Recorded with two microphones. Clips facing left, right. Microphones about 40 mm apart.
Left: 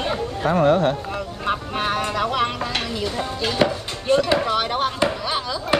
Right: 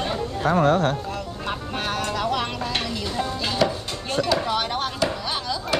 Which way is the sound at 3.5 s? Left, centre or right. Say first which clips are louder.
Left 2 dB; left.